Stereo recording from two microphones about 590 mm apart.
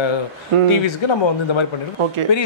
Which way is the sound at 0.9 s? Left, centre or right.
Left.